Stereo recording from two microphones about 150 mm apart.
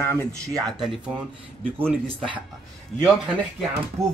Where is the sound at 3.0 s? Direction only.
5° right (ahead or behind).